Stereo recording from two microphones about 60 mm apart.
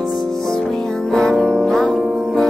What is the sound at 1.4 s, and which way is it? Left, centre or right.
Music, centre.